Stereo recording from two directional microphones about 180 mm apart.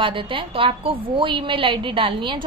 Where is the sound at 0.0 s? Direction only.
30° right (ahead or behind).